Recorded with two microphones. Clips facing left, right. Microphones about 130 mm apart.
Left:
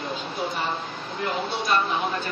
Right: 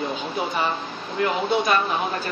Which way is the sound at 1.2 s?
60° right (ahead or behind).